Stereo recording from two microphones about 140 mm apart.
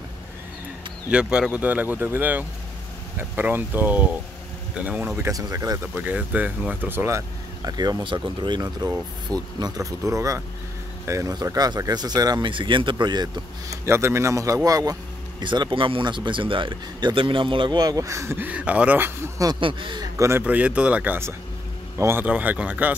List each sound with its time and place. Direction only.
1.1 s speech: 5° right (ahead or behind); by 5.8 s 25° right (ahead or behind)
5.9 s speech: 10° right (ahead or behind); by 13.7 s 30° right (ahead or behind)
13.8 s speech: 20° right (ahead or behind)
19.6 s speech: 35° right (ahead or behind)
20.2 s speech: 20° right (ahead or behind)